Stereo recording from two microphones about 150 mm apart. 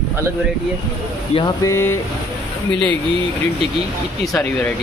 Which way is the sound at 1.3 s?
25° left (ahead or behind).